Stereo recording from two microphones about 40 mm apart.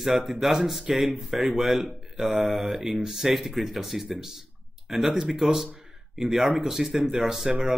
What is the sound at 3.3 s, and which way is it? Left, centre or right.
Speech, centre.